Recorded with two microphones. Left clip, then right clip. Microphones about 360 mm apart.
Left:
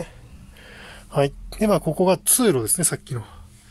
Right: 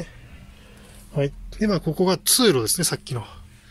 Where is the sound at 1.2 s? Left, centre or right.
Centre.